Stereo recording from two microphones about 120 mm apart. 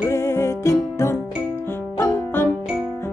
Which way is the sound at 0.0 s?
20° left (ahead or behind).